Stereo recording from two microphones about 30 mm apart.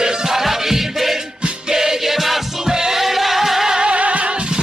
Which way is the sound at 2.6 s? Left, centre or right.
Centre.